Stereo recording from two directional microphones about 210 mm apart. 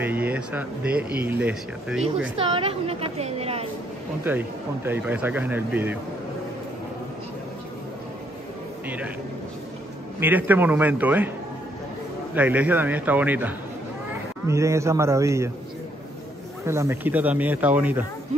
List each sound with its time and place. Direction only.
0.0 s speech: 10° right (ahead or behind)
2.3 s a woman's voice: 25° right (ahead or behind)
4.3 s speech: 10° right (ahead or behind)
8.8 s speech: 5° right (ahead or behind)
10.2 s speech: 10° right (ahead or behind)
12.4 s speech: 5° right (ahead or behind)
16.6 s speech: 10° right (ahead or behind)